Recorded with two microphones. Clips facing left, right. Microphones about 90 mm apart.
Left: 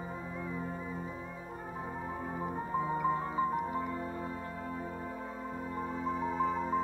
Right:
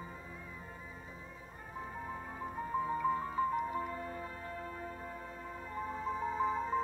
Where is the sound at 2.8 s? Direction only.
20° left (ahead or behind).